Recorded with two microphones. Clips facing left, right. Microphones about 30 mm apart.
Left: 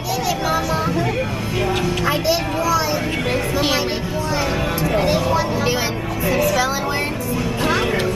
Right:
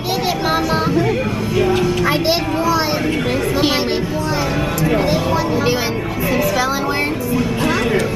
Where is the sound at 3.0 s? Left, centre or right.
Centre.